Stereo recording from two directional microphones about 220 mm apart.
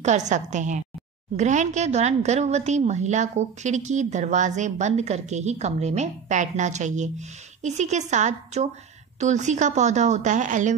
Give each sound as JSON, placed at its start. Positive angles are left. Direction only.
{"t": 0.0, "sound": "speech", "side_deg": -30}